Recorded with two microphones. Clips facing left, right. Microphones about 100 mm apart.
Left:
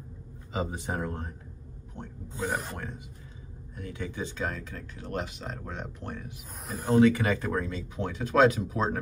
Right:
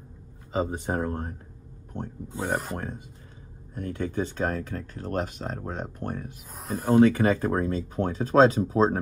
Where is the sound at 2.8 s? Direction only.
45° right (ahead or behind).